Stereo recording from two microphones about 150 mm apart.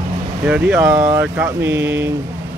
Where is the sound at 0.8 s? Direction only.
20° right (ahead or behind).